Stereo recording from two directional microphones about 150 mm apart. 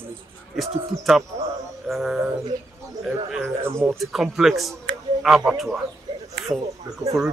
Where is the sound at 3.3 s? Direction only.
10° right (ahead or behind).